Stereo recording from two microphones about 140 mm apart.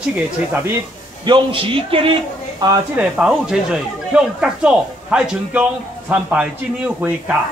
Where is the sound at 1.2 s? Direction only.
35° right (ahead or behind).